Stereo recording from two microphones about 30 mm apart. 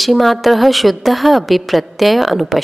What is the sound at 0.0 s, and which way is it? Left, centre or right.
A woman's voice, centre.